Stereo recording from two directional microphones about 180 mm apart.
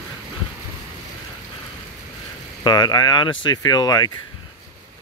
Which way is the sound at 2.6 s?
25° left (ahead or behind).